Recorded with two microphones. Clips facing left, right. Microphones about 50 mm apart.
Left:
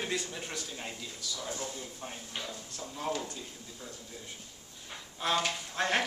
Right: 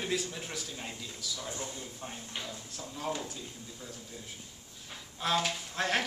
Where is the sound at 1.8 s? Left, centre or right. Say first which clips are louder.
Even; centre.